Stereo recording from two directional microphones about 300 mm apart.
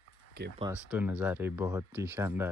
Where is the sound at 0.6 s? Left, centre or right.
Centre.